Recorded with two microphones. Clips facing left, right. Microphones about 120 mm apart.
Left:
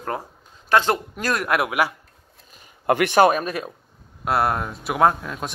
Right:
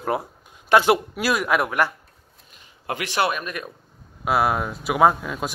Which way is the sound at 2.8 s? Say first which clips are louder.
Left 10 dB; 55° left (ahead or behind).